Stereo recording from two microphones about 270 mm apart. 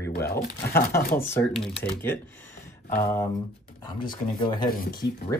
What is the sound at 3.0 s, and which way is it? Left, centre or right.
Speech, centre.